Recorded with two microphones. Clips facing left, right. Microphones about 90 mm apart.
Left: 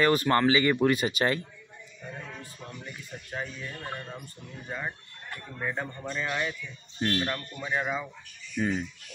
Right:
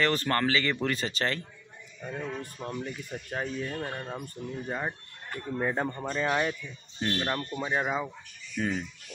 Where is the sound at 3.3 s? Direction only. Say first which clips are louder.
Right 4 dB; 45° right (ahead or behind).